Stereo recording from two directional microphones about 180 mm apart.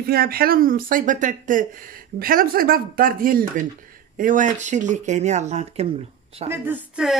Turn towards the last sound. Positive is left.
turn(degrees=-5)  # may be behind; listen again after turning